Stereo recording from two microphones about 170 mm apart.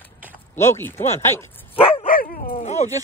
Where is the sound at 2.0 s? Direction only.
55° left (ahead or behind).